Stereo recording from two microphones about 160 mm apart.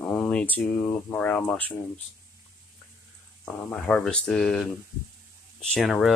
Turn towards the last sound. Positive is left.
turn(degrees=0)  # may be behind; listen again after turning